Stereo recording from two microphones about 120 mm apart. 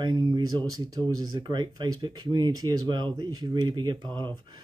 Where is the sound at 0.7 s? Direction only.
30° right (ahead or behind).